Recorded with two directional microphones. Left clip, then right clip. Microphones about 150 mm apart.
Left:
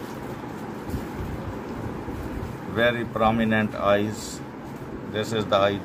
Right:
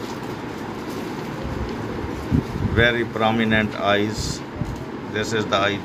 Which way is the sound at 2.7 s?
45° left (ahead or behind).